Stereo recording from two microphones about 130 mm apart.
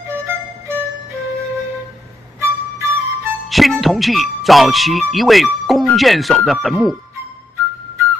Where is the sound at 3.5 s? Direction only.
Centre (ahead or behind).